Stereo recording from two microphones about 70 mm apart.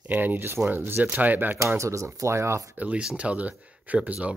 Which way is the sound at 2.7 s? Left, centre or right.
Centre.